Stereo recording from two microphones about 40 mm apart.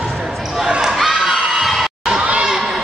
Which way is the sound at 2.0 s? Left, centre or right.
Right.